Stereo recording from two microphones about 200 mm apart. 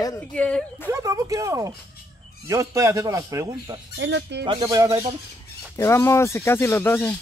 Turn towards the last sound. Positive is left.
turn(degrees=10)  # may be behind; listen again after turning